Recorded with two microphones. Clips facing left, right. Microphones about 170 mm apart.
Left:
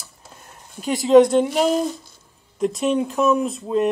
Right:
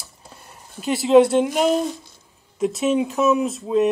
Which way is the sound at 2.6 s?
5° right (ahead or behind).